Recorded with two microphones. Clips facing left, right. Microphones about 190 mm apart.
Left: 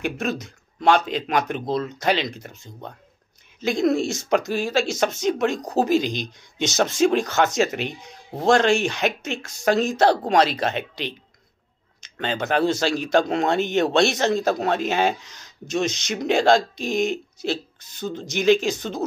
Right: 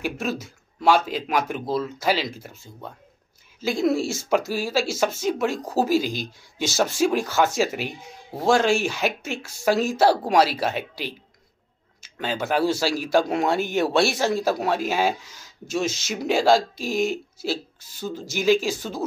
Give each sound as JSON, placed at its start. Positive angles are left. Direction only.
{"t": 0.0, "sound": "speech", "side_deg": -5}
{"t": 3.6, "sound": "speech", "side_deg": -5}